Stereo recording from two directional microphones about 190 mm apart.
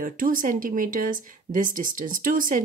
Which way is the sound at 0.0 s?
45° right (ahead or behind).